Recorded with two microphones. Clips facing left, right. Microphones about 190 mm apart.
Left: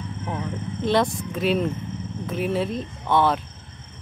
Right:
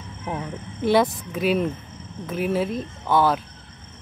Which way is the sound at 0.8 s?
5° right (ahead or behind).